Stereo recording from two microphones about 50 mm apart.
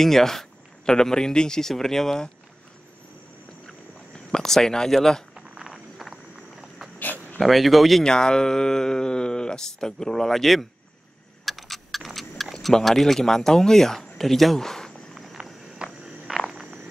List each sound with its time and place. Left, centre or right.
0.0 s speech: centre
3.6 s a sound: centre
5.6 s a sound: centre
7.3 s speech: centre
8.0 s speech: centre
11.4 s clock: centre
12.6 s speech: centre
15.4 s walk: centre
16.3 s a sound: centre